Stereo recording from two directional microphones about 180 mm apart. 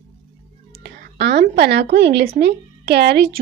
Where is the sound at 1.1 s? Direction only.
65° right (ahead or behind).